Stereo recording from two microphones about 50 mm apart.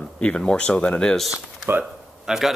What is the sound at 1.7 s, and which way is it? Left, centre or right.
Speech, right.